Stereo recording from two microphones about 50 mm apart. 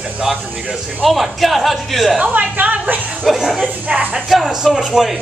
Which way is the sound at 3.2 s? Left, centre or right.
Centre.